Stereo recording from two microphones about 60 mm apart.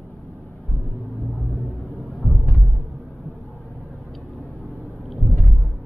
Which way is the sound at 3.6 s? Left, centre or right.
Left.